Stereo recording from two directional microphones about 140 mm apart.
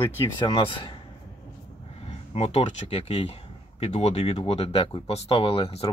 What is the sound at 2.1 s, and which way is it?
Speech, 50° left (ahead or behind).